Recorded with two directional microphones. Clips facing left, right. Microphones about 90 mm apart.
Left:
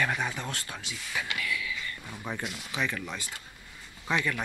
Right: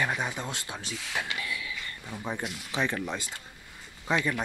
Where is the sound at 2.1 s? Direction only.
15° right (ahead or behind).